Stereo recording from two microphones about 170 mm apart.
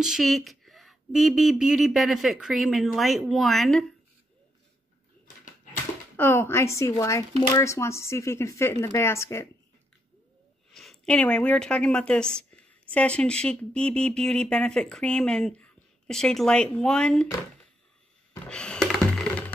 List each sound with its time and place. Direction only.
0.0 s speech: centre (ahead or behind)
6.1 s speech: 10° left (ahead or behind)
10.7 s a woman's voice: centre (ahead or behind)
18.3 s a sound: 5° left (ahead or behind)